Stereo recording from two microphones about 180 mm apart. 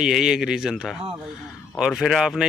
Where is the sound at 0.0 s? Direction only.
5° right (ahead or behind).